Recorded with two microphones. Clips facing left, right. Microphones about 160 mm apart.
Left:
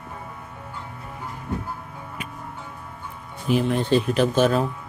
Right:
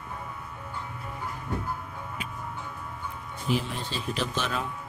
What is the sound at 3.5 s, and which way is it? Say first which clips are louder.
Speech: left 10 dB; 55° left (ahead or behind).